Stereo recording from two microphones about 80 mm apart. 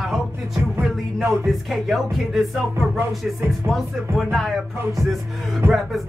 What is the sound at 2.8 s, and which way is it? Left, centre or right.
Music, right.